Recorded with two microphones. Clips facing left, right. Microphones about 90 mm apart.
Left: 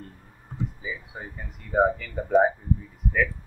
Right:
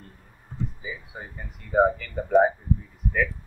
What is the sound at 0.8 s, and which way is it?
Speech, centre (ahead or behind).